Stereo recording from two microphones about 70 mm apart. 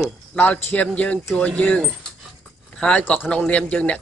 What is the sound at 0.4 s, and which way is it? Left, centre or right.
Speech, left.